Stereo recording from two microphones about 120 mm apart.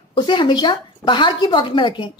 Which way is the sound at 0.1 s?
40° left (ahead or behind).